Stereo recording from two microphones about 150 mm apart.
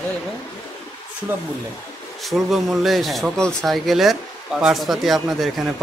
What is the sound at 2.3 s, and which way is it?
Speech, centre (ahead or behind).